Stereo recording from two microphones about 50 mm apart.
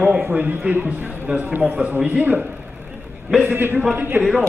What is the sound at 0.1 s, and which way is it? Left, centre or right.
A man's voice, right.